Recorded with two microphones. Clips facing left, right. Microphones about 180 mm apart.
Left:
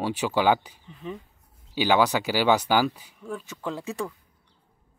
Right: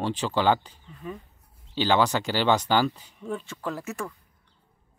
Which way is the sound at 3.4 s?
20° left (ahead or behind).